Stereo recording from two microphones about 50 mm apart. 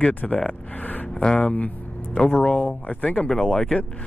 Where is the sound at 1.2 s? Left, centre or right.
Centre.